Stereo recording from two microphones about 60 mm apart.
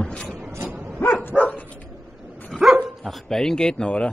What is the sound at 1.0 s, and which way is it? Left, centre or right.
Dog, left.